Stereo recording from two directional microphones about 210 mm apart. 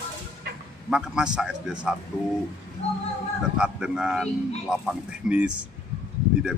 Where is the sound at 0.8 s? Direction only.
5° right (ahead or behind).